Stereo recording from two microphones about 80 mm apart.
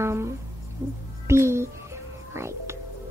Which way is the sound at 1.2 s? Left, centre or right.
Right.